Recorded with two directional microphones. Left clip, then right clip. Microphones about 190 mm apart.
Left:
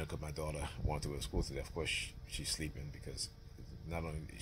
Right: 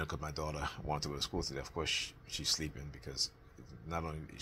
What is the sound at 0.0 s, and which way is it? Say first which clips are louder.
Speech: right 3 dB; 15° left (ahead or behind).